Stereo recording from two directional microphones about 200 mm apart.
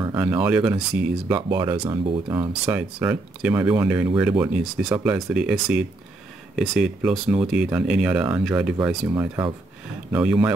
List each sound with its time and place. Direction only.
0.1 s speech: 10° right (ahead or behind)
2.5 s speech: 5° right (ahead or behind)
9.1 s speech: 20° right (ahead or behind)
10.1 s speech: 5° right (ahead or behind)